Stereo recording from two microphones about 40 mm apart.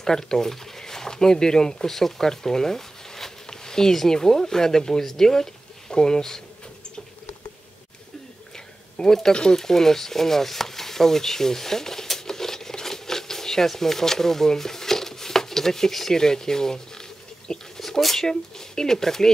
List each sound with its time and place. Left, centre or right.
0.0 s speech: centre
8.5 s a sound: centre
9.3 s speech: centre